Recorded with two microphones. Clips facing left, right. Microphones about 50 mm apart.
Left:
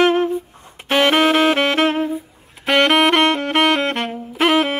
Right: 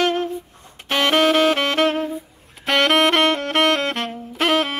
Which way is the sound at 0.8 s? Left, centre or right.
Centre.